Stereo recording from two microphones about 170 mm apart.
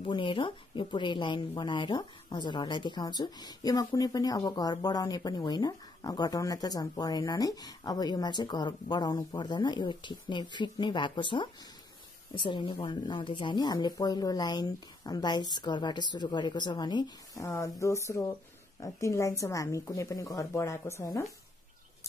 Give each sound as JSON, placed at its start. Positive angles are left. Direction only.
{"t": 0.0, "sound": "a woman's voice", "side_deg": 30}